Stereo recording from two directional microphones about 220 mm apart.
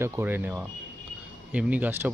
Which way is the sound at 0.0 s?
10° right (ahead or behind).